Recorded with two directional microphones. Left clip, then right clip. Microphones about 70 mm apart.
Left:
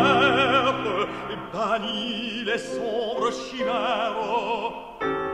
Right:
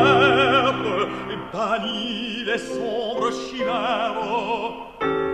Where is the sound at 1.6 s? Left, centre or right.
Left.